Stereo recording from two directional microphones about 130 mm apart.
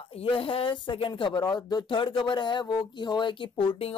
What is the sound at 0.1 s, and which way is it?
A woman's voice, 45° left (ahead or behind).